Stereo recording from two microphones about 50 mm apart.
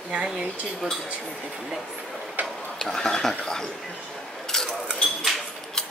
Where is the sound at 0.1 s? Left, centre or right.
Centre.